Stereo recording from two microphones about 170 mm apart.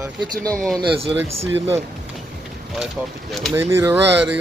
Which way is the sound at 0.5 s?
Centre (ahead or behind).